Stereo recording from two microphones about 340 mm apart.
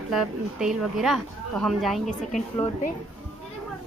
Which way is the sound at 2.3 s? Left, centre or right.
Left.